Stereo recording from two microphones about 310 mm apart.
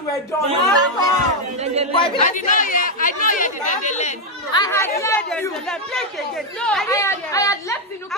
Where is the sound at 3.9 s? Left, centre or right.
Centre.